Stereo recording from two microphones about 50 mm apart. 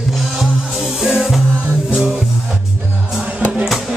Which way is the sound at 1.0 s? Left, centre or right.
Centre.